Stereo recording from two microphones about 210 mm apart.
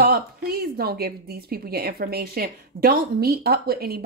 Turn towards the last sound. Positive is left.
turn(degrees=-45)  # may be behind; listen again after turning